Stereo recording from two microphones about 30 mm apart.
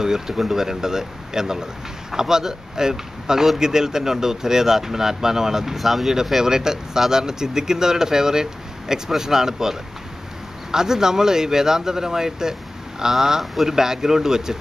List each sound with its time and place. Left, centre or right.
0.0 s speech: centre
5.8 s speech: centre
6.4 s speech: centre